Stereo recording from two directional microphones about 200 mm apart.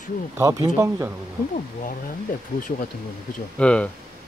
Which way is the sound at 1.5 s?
45° left (ahead or behind).